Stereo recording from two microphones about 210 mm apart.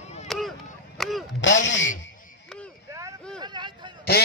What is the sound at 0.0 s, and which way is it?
Chop, 30° left (ahead or behind).